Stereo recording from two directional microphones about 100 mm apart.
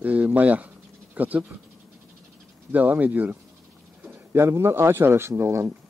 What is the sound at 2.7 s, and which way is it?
Speech, 15° right (ahead or behind).